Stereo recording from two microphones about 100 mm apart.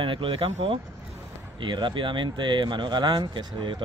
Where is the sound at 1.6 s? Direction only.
55° right (ahead or behind).